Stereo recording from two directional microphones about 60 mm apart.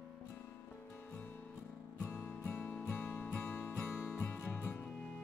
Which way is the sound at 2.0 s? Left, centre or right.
Left.